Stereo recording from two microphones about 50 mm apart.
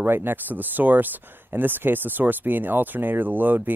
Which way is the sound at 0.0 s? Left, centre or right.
Right.